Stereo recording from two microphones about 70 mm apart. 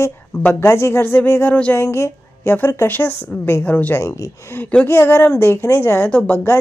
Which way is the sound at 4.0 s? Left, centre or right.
Left.